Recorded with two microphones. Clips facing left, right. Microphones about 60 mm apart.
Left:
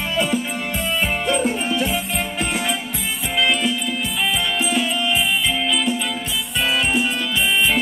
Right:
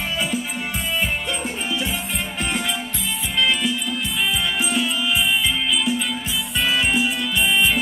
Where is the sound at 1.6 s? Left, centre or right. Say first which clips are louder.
Left 4 dB; left.